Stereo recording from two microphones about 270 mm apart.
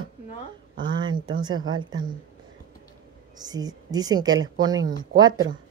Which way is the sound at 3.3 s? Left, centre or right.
Centre.